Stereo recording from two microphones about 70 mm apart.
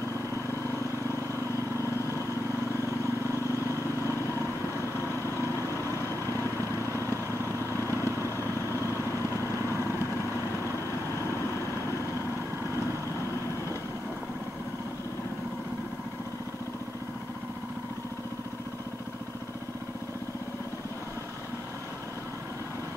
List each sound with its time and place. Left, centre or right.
1.8 s vehicle: left